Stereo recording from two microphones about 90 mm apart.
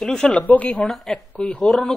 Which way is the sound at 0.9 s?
Centre (ahead or behind).